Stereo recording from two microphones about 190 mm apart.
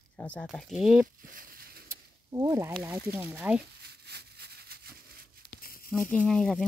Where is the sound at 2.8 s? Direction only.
10° right (ahead or behind).